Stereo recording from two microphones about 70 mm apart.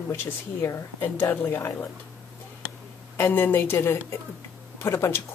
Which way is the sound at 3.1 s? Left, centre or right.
Left.